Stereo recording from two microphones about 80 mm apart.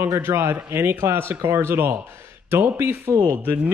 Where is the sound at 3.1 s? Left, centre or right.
Right.